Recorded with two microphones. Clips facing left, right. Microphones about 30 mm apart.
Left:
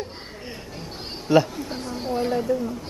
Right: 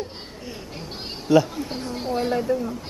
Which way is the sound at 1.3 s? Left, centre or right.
Centre.